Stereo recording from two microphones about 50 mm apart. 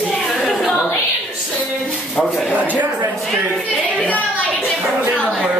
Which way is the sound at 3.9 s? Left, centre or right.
Left.